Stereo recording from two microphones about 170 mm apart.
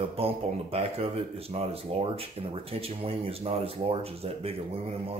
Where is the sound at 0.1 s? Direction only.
35° right (ahead or behind).